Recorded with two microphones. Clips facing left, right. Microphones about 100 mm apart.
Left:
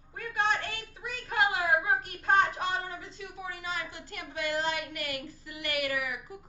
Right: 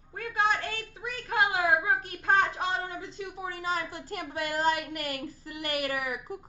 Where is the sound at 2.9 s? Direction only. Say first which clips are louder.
Right 4 dB; 25° right (ahead or behind).